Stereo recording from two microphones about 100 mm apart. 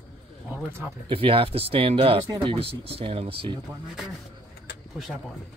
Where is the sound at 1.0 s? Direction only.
60° right (ahead or behind).